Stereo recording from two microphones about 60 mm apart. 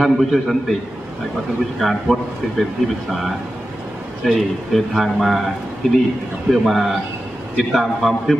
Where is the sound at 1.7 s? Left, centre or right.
Centre.